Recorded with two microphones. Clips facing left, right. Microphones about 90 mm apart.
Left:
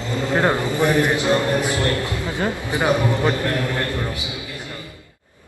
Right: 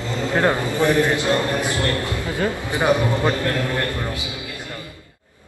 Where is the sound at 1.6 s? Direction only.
20° left (ahead or behind).